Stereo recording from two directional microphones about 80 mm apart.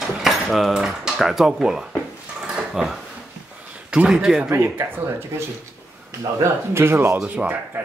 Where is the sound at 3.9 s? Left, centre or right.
Centre.